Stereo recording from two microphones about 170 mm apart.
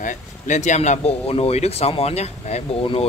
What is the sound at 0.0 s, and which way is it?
Speech, 45° left (ahead or behind).